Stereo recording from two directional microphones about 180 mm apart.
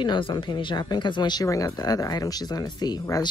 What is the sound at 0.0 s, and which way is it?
Speech, 25° left (ahead or behind).